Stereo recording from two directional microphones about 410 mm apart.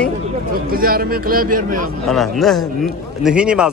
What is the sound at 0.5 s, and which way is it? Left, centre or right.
Speech, right.